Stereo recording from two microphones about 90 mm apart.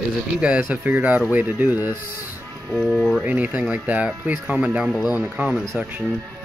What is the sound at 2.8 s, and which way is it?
Speech, centre (ahead or behind).